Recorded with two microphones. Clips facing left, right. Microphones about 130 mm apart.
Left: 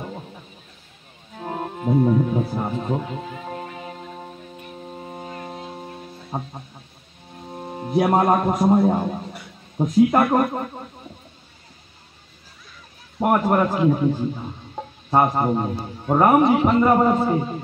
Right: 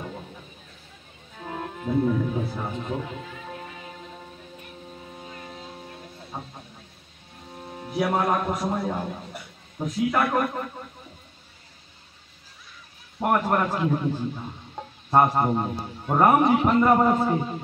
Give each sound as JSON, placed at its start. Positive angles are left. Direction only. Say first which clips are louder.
{"t": 1.4, "sound": "speech", "louder": "left 5 dB", "side_deg": 35}
{"t": 5.1, "sound": "foghorn", "louder": "left 8 dB", "side_deg": 60}
{"t": 6.3, "sound": "speech", "louder": "left 7 dB", "side_deg": 45}
{"t": 7.8, "sound": "a man's voice", "louder": "left 6 dB", "side_deg": 45}
{"t": 13.2, "sound": "a man's voice", "louder": "left 4 dB", "side_deg": 10}